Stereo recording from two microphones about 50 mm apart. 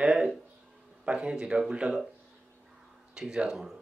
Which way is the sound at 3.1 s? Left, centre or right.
Centre.